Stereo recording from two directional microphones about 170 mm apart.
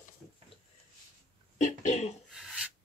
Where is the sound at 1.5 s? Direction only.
45° left (ahead or behind).